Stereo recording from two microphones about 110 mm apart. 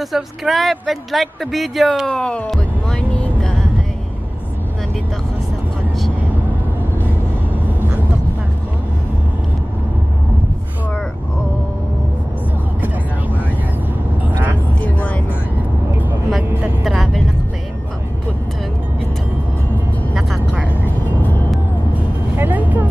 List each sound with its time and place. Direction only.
0.0 s speech: centre (ahead or behind)
14.8 s vehicle: 15° left (ahead or behind)
16.8 s speech: centre (ahead or behind)
20.2 s music: 10° right (ahead or behind)
22.4 s vehicle: 15° right (ahead or behind)